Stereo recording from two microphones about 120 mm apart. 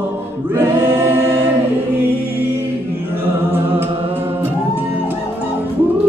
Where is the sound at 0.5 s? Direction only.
20° right (ahead or behind).